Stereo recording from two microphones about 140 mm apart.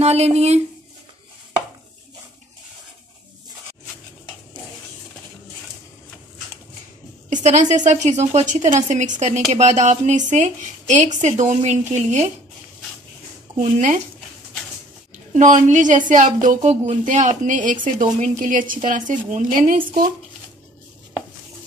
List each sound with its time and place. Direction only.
0.0 s speech: 50° right (ahead or behind)
7.2 s speech: 60° right (ahead or behind)
13.6 s speech: 60° right (ahead or behind)
15.3 s a woman's voice: 65° right (ahead or behind); by 20.1 s 80° right